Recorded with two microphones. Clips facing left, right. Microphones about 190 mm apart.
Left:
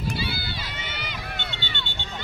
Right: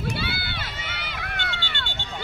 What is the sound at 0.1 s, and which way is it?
Run, 60° right (ahead or behind).